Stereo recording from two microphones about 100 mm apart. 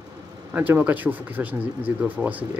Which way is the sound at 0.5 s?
15° right (ahead or behind).